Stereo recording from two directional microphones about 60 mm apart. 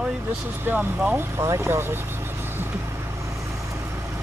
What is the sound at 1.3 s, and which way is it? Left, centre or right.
Speech, right.